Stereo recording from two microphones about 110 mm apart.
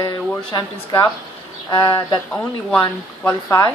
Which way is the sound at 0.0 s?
45° left (ahead or behind).